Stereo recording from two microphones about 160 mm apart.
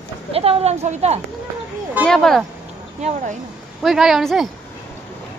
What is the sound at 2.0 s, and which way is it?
Speech, centre (ahead or behind).